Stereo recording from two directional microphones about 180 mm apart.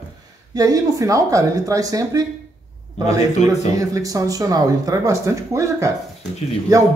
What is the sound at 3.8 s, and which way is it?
Speech, 20° right (ahead or behind).